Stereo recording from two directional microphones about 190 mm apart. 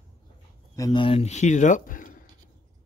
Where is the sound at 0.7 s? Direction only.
20° left (ahead or behind); by 2.1 s 45° left (ahead or behind).